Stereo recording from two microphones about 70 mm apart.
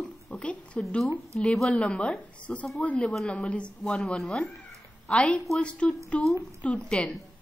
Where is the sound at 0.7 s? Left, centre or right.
Centre.